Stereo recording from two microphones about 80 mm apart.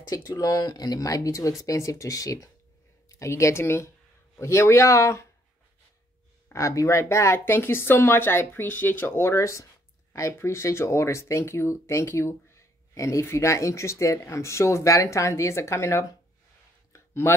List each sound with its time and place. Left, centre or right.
0.1 s speech: left
6.5 s speech: left
16.9 s a sound: left